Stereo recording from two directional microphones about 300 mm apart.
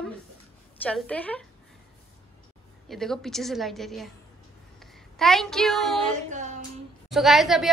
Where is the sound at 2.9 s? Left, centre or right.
Centre.